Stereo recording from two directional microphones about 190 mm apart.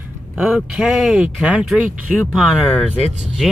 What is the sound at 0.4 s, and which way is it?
Speech, 5° right (ahead or behind).